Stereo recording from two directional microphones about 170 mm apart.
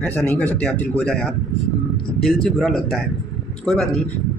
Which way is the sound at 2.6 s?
Centre (ahead or behind).